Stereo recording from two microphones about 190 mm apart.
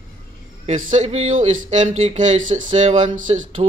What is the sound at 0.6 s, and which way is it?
Speech, 40° right (ahead or behind).